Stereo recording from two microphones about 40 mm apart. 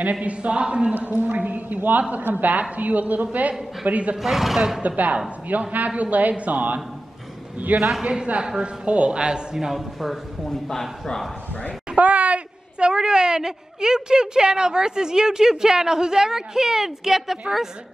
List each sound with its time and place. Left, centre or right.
0.0 s a woman's voice: right
4.2 s a man's voice: centre
4.8 s a woman's voice: right
8.0 s speech: right
8.8 s speech: right
9.7 s a man's voice: centre
10.5 s a man's voice: centre
11.9 s speech: right; by 17.6 s centre